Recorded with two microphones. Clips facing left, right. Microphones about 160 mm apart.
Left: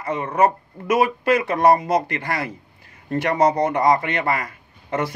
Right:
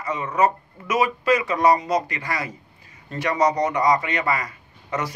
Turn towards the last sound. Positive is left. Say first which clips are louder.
# left 3 dB
turn(degrees=55)  # may be behind; listen again after turning